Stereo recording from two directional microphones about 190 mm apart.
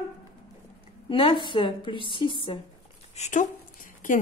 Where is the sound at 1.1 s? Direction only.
25° left (ahead or behind).